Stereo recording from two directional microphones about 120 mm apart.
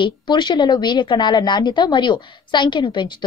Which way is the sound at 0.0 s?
40° left (ahead or behind).